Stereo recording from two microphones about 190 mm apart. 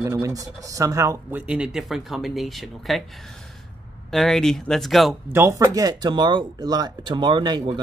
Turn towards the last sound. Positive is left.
turn(degrees=-25)  # may be behind; listen again after turning